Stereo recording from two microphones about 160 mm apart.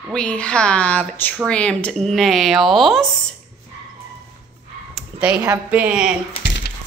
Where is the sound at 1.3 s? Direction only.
5° right (ahead or behind).